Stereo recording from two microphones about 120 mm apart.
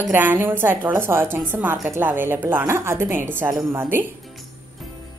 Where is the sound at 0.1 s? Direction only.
15° right (ahead or behind).